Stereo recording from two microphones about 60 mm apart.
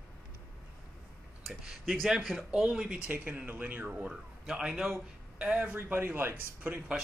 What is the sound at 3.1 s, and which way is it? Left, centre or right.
Speech, right.